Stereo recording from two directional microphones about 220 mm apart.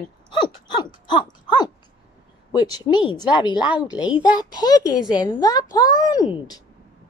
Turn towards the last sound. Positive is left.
turn(degrees=15)  # may be behind; listen again after turning